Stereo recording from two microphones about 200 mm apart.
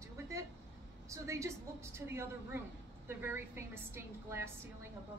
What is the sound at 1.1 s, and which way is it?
A woman's voice, 15° right (ahead or behind).